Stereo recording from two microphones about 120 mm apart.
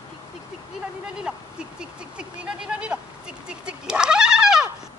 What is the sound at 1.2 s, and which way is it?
Speech, 10° right (ahead or behind).